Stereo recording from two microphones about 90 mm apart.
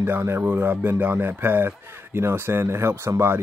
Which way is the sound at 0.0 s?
25° right (ahead or behind).